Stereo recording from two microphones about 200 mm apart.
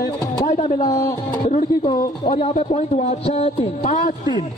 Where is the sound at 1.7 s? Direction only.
20° left (ahead or behind); by 4.3 s 35° left (ahead or behind).